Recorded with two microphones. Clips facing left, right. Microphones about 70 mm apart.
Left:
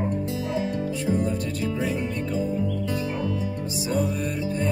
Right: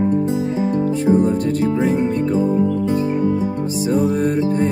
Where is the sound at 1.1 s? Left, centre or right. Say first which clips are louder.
Right 10 dB; right.